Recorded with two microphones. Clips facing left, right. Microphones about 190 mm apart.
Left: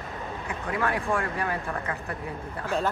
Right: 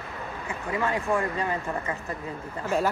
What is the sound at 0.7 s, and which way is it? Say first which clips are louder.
Speech: right 1 dB; 15° right (ahead or behind).